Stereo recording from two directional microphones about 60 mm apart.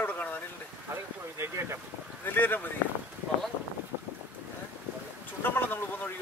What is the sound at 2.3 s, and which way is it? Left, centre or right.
Speech, left.